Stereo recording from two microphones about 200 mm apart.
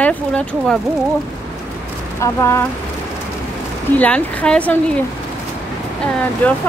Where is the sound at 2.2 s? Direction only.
15° left (ahead or behind).